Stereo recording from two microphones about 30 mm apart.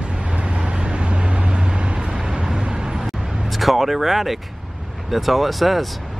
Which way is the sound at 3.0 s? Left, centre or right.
Centre.